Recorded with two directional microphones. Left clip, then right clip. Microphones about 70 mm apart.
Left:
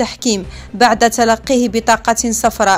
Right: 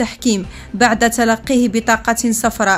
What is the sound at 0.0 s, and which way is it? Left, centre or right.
A woman's voice, left.